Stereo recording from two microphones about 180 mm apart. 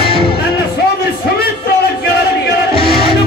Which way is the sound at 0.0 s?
30° left (ahead or behind).